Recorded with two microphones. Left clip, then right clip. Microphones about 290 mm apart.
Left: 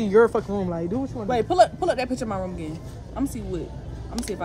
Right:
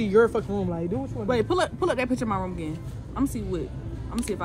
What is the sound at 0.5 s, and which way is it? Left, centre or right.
Speech, left.